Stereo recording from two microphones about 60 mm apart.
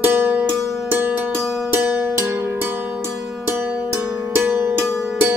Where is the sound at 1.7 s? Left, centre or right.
Right.